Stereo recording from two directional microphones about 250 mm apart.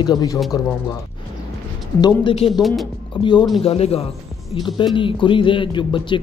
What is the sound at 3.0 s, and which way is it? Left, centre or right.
Speech, centre.